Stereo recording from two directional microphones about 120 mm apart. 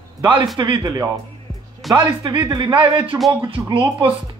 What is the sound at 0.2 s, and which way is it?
A man's voice, 40° right (ahead or behind).